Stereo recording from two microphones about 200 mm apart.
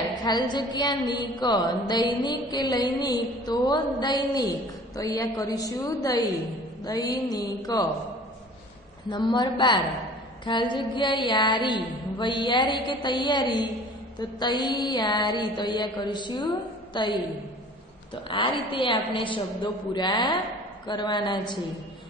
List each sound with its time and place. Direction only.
0.2 s a woman's voice: 20° left (ahead or behind)
9.1 s a woman's voice: 20° left (ahead or behind)
18.3 s a woman's voice: 25° left (ahead or behind)